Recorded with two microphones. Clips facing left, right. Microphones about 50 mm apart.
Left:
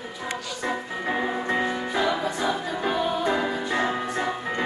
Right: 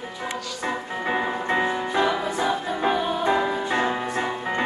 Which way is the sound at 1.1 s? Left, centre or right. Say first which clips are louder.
Right 1 dB; right.